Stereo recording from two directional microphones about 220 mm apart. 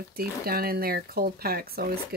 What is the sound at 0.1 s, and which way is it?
Speech, 45° right (ahead or behind).